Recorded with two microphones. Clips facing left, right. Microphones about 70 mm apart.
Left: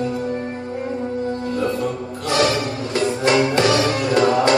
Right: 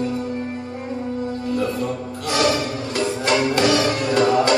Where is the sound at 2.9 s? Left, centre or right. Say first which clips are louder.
Left 3 dB; left.